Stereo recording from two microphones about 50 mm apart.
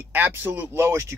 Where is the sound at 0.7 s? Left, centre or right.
Right.